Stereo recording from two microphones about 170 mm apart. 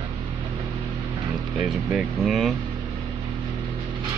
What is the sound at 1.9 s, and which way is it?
Speech, centre (ahead or behind).